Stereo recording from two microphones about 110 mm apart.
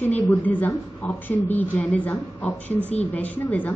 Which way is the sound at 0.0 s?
15° left (ahead or behind).